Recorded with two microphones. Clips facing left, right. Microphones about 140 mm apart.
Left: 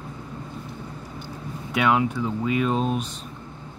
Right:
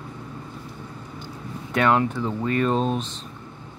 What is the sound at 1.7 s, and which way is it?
Speech, 5° left (ahead or behind).